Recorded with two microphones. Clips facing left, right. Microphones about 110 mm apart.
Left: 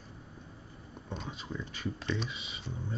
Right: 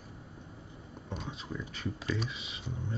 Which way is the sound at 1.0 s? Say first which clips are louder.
Even; centre (ahead or behind).